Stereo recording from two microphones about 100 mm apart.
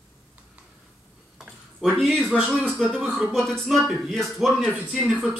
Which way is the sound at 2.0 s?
5° left (ahead or behind).